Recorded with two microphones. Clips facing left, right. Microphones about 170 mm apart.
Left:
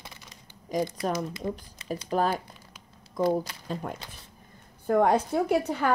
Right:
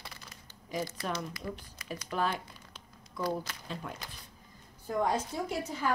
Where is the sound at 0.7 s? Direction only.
40° left (ahead or behind).